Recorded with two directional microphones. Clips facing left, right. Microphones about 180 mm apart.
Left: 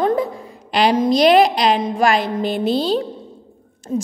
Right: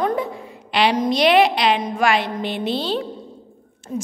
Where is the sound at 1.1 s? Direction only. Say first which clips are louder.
Left 3 dB; 40° left (ahead or behind).